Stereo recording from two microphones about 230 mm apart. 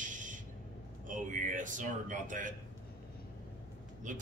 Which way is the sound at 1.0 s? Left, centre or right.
Right.